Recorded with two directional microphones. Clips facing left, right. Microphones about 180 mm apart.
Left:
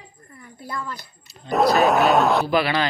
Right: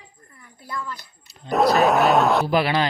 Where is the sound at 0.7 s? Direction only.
45° left (ahead or behind).